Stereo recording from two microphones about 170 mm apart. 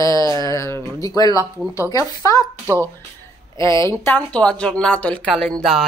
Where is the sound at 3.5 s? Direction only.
15° left (ahead or behind); by 5.9 s centre (ahead or behind).